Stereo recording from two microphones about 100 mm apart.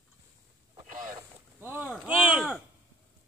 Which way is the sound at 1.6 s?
25° right (ahead or behind).